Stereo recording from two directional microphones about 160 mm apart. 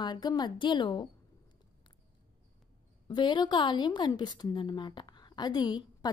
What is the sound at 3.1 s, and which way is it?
A woman's voice, 30° left (ahead or behind).